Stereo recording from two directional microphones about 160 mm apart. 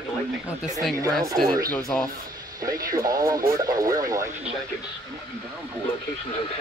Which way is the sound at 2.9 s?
20° right (ahead or behind).